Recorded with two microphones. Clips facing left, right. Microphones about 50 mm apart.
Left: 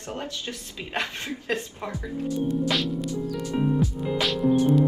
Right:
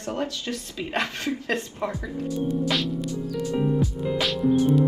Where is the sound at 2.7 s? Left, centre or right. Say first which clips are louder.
Even; centre.